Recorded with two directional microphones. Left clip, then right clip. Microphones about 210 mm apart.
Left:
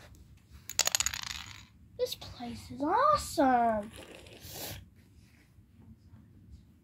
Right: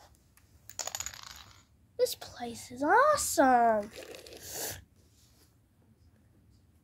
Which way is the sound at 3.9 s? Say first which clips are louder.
Right 3 dB; 45° right (ahead or behind).